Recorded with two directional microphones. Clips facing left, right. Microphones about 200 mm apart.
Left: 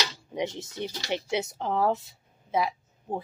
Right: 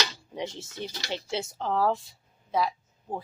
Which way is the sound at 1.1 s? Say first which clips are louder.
Left 4 dB; 20° left (ahead or behind).